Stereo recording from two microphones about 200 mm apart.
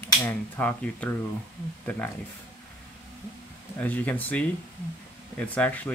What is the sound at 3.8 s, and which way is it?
Speech, 10° left (ahead or behind).